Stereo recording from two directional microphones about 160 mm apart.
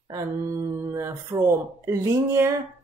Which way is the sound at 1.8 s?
20° right (ahead or behind).